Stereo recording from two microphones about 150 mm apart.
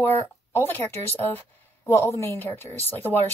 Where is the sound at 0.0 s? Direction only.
15° left (ahead or behind).